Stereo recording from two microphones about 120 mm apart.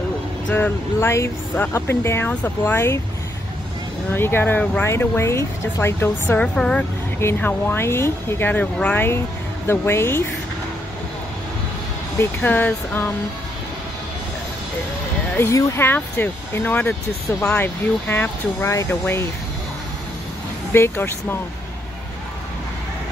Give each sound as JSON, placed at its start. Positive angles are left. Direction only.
{"t": 0.5, "sound": "speech", "side_deg": 15}
{"t": 4.1, "sound": "speech", "side_deg": 20}
{"t": 7.2, "sound": "speech", "side_deg": 20}
{"t": 12.2, "sound": "speech", "side_deg": 15}
{"t": 15.3, "sound": "speech", "side_deg": 20}
{"t": 20.7, "sound": "speech", "side_deg": 20}